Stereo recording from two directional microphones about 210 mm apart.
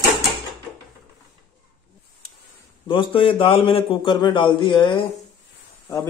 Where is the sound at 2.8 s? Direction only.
25° left (ahead or behind).